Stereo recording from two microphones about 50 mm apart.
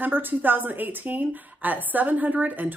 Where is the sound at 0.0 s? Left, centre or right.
Right.